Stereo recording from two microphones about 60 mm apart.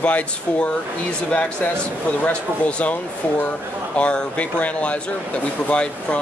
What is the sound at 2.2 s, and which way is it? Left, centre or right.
Speech, left.